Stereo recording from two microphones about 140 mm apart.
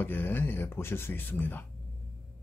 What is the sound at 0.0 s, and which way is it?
Speech, 15° left (ahead or behind).